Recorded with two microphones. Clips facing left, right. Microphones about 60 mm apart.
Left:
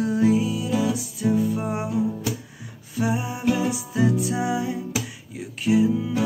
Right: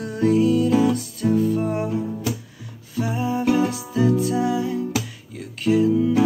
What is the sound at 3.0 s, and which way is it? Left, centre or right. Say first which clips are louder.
Music: right 2 dB; centre.